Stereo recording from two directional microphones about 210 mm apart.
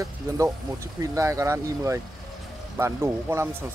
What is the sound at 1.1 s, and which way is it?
Speech, 15° right (ahead or behind).